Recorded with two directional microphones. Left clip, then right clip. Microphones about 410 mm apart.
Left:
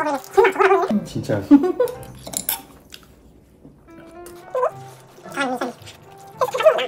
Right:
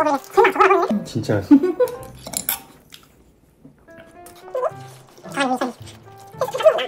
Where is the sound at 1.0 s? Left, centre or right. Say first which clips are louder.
Right 2 dB; centre.